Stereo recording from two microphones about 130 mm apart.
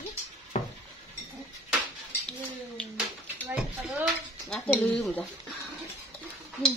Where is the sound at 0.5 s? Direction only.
60° left (ahead or behind).